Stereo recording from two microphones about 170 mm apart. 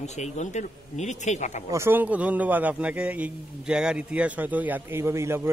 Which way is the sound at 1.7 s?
15° right (ahead or behind).